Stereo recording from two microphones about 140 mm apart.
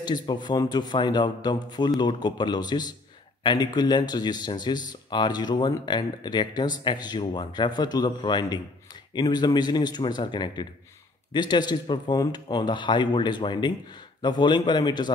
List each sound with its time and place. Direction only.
0.0 s speech: 30° left (ahead or behind)